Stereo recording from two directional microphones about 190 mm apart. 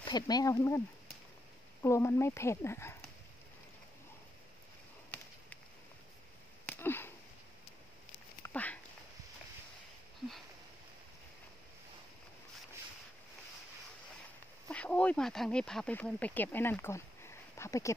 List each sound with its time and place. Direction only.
0.0 s speech: 20° left (ahead or behind)
6.6 s sniff: 10° left (ahead or behind)
8.4 s a sound: 15° left (ahead or behind)
14.7 s speech: 5° left (ahead or behind)